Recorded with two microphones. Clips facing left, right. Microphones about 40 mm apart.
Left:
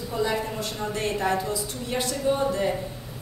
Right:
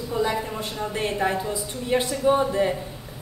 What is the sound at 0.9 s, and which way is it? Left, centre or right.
A woman's voice, centre.